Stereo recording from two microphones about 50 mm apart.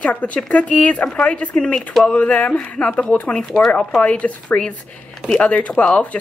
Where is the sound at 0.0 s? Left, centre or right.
Left.